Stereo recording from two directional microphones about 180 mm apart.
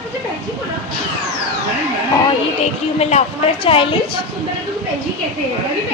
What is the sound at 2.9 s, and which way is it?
Speech, 35° left (ahead or behind).